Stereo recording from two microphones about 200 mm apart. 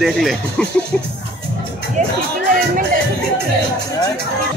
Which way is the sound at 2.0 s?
35° right (ahead or behind).